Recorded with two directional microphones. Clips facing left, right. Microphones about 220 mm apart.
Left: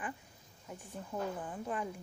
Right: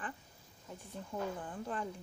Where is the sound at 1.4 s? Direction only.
5° left (ahead or behind).